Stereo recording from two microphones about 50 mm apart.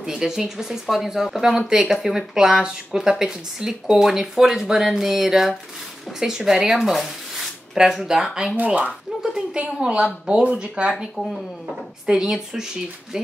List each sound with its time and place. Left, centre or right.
0.0 s speech: centre
8.5 s speech: right
9.2 s a sound: centre
9.7 s speech: centre
11.1 s speech: centre
12.1 s speech: centre